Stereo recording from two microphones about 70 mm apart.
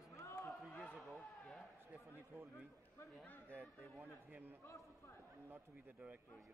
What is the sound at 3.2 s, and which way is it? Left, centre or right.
Speech, left.